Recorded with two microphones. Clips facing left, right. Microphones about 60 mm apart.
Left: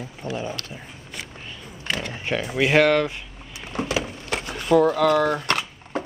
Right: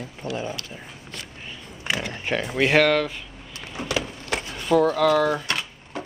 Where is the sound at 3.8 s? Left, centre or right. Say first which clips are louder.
Left 2 dB; centre.